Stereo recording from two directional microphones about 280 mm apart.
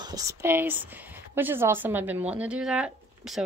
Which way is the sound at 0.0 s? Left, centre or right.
Centre.